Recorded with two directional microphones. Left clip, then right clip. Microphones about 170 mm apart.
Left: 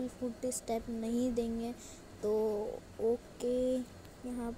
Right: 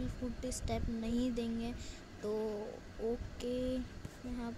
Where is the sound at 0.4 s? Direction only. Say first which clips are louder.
Left 4 dB; 15° left (ahead or behind).